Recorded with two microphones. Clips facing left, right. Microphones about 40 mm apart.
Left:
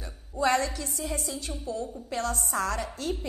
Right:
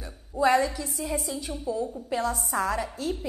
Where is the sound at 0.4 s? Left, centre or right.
Centre.